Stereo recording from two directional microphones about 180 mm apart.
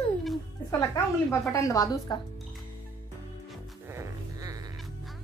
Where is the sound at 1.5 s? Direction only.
20° left (ahead or behind).